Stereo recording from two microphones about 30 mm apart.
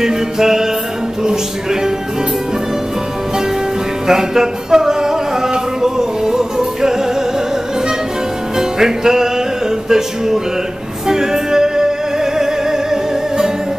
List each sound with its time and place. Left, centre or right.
0.0 s music: centre
1.2 s speech: centre
4.1 s a sound: centre
8.5 s music: centre